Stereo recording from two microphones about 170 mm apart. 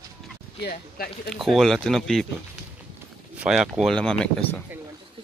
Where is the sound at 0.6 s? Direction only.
65° left (ahead or behind).